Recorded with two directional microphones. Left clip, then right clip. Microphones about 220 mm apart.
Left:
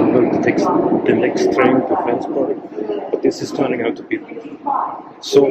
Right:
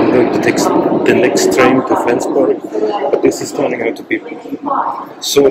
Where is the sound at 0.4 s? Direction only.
15° right (ahead or behind).